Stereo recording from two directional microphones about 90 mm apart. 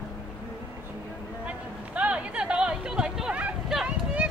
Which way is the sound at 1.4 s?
15° right (ahead or behind).